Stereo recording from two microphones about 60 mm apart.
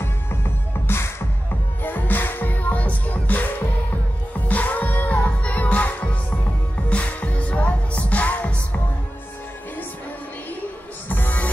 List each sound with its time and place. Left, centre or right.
0.8 s music: left
1.8 s music: left
11.1 s music: left